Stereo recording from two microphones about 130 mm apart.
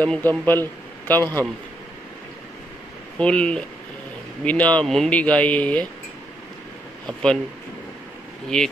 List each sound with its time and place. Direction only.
0.0 s speech: 10° left (ahead or behind)
3.2 s speech: 10° left (ahead or behind)
7.1 s speech: 5° left (ahead or behind)
8.5 s speech: 5° left (ahead or behind)